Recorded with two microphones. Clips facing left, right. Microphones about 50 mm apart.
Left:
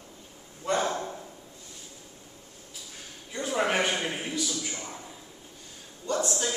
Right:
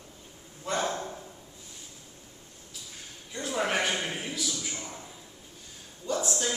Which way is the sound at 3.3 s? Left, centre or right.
Centre.